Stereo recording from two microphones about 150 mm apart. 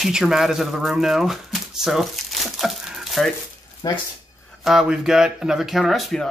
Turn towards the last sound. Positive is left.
turn(degrees=0)  # may be behind; listen again after turning